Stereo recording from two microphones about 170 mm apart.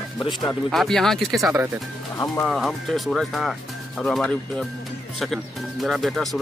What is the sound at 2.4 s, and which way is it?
Speech, centre (ahead or behind).